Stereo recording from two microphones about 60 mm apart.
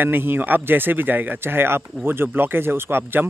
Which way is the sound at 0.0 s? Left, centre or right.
Right.